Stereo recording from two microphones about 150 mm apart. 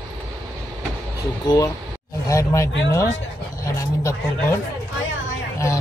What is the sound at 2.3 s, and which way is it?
Speech, 20° left (ahead or behind).